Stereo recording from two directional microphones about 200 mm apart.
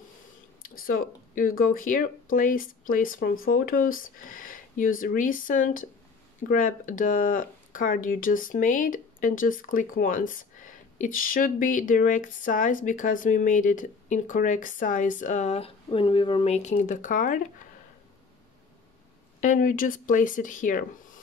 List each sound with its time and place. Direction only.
0.6 s speech: 45° left (ahead or behind)
19.4 s speech: 40° left (ahead or behind)